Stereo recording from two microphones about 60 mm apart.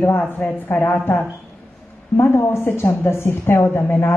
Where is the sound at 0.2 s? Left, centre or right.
Centre.